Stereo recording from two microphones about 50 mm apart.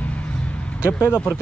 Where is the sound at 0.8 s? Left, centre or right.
Left.